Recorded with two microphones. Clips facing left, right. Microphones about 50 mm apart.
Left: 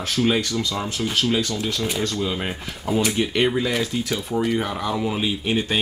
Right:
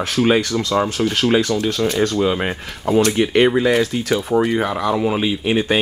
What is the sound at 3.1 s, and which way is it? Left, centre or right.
Speech, right.